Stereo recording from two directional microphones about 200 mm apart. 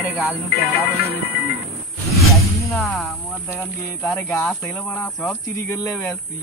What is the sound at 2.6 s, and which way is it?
Speech, centre (ahead or behind).